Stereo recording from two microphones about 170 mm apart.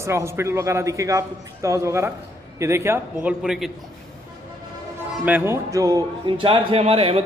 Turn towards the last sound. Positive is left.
turn(degrees=-35)  # may be behind; listen again after turning